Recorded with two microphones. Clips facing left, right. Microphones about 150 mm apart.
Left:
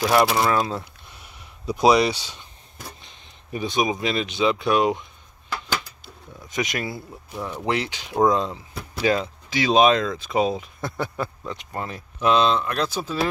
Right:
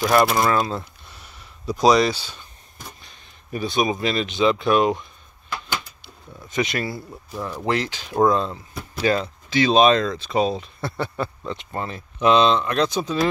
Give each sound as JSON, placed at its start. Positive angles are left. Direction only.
{"t": 0.0, "sound": "speech", "side_deg": 5}
{"t": 3.0, "sound": "speech", "side_deg": 20}
{"t": 6.5, "sound": "speech", "side_deg": 15}